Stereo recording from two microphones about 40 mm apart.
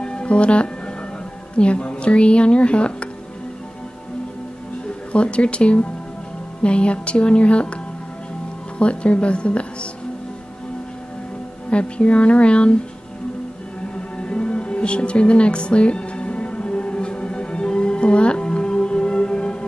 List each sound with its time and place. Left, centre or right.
0.0 s music: left
1.6 s speech: left
5.1 s speech: left
8.7 s speech: left
11.7 s speech: left
13.9 s music: left